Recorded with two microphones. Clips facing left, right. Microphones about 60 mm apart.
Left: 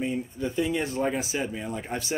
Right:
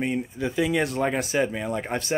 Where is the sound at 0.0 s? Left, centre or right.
Right.